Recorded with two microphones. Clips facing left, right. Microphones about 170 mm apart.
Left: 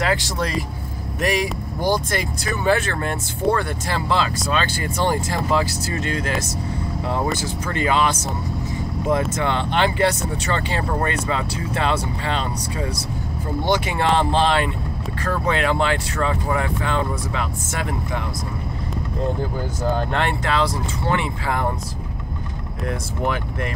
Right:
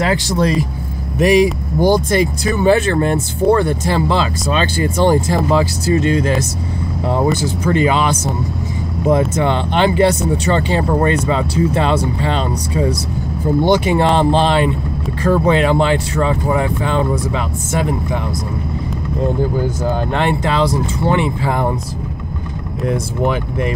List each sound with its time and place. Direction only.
0.0 s speech: 25° right (ahead or behind)
7.6 s speech: 20° right (ahead or behind)
9.4 s speech: 20° right (ahead or behind)
19.8 s speech: 20° right (ahead or behind)
22.8 s speech: 20° right (ahead or behind)